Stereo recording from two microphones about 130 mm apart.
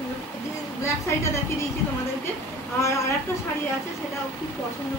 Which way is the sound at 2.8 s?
20° left (ahead or behind).